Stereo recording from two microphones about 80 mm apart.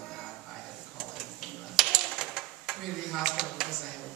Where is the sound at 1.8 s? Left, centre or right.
Centre.